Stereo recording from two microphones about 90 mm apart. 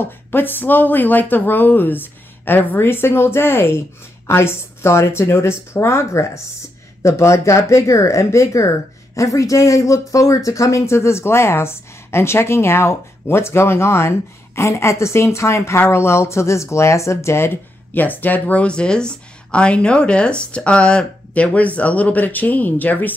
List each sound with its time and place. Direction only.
0.0 s speech: 25° left (ahead or behind)
17.9 s speech: 20° left (ahead or behind)